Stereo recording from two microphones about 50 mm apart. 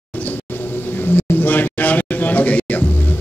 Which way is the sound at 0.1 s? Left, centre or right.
Left.